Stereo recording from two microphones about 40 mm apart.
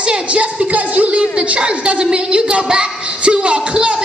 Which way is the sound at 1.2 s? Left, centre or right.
Right.